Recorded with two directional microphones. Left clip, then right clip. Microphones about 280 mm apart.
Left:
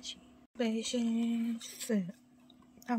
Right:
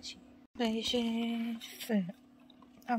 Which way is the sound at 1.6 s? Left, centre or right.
Left.